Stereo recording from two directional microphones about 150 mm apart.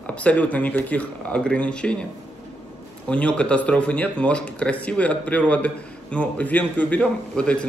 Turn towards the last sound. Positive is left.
turn(degrees=5)  # may be behind; listen again after turning